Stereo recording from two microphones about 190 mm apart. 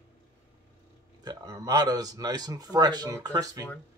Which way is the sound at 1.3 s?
20° right (ahead or behind).